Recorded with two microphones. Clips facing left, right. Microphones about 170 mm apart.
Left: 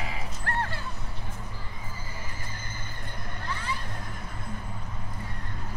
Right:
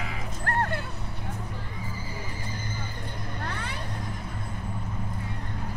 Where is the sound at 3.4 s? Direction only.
60° right (ahead or behind).